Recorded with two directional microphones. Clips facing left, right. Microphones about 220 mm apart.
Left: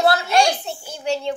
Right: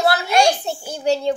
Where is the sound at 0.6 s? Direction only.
40° right (ahead or behind).